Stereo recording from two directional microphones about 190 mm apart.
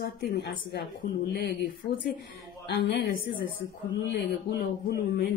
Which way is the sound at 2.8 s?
55° left (ahead or behind).